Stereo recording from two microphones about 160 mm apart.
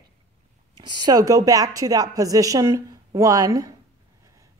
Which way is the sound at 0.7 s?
25° right (ahead or behind).